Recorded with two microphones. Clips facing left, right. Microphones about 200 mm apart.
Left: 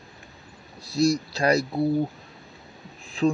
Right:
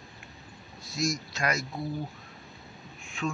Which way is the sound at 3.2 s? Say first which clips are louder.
Left 10 dB; 35° left (ahead or behind).